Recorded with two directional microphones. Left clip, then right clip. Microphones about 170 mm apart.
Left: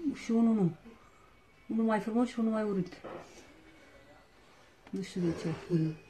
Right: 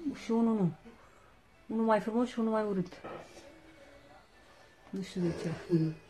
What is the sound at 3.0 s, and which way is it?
Speech, 30° right (ahead or behind).